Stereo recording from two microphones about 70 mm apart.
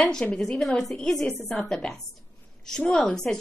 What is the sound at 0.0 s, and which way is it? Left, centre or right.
A woman's voice, centre.